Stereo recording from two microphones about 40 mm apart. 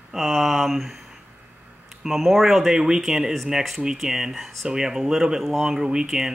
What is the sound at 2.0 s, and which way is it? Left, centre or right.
Speech, centre.